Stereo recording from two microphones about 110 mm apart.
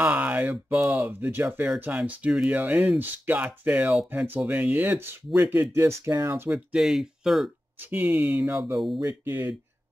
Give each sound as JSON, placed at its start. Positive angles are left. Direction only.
{"t": 0.0, "sound": "speech", "side_deg": -15}
{"t": 0.7, "sound": "speech", "side_deg": -25}
{"t": 6.5, "sound": "speech", "side_deg": -5}
{"t": 7.8, "sound": "speech", "side_deg": -15}